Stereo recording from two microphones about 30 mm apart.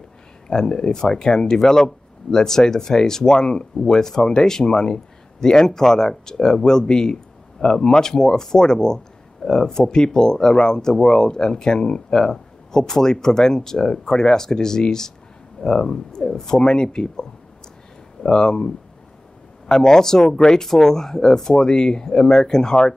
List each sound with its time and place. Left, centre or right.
0.5 s speech: left
19.7 s speech: left